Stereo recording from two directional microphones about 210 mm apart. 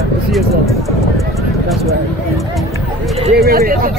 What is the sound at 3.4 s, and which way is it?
Speech, 45° right (ahead or behind).